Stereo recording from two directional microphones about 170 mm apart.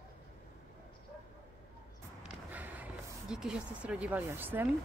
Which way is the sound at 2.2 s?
10° right (ahead or behind).